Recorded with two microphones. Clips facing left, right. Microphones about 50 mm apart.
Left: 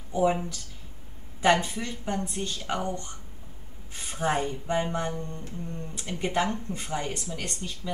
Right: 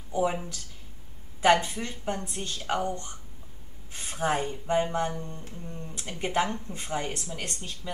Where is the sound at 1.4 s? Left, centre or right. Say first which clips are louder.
Right 1 dB; right.